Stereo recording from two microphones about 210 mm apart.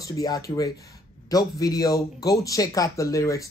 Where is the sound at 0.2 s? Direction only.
15° left (ahead or behind).